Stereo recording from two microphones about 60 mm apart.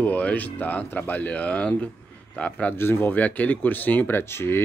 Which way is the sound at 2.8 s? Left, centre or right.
Left.